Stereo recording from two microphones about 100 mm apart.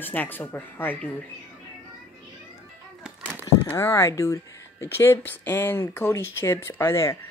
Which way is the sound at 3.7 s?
30° left (ahead or behind).